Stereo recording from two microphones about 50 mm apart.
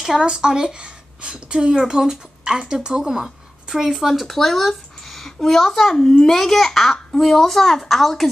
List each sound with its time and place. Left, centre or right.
0.2 s a woman's voice: centre
6.0 s a child's voice: centre
6.3 s a child's voice: centre